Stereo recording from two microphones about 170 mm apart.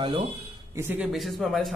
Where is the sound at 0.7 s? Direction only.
10° right (ahead or behind).